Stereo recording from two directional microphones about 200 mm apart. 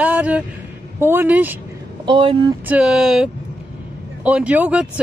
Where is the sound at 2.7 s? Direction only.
5° right (ahead or behind).